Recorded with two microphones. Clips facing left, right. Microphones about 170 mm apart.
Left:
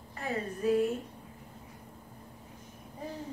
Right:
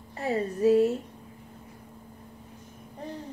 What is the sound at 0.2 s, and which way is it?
Speech, 35° right (ahead or behind).